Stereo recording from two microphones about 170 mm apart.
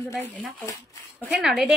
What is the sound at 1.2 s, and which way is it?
Speech, 5° right (ahead or behind).